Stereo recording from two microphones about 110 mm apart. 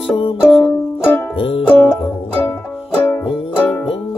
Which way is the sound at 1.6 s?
10° left (ahead or behind).